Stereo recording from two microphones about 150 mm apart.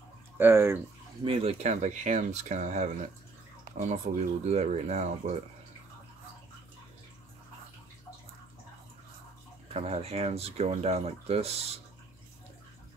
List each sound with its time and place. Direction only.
0.4 s speech: 15° right (ahead or behind)
1.2 s speech: 40° right (ahead or behind)
9.8 s speech: 45° right (ahead or behind)